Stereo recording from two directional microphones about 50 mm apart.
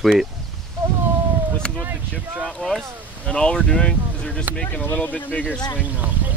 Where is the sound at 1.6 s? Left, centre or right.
Centre.